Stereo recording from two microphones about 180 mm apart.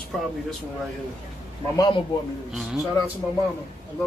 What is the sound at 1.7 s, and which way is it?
Speech, 20° left (ahead or behind).